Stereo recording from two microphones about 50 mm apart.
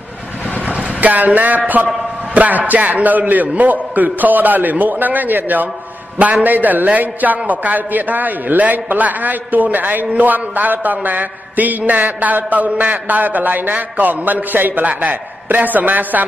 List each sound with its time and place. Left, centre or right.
0.7 s vehicle: right
2.3 s a man's voice: right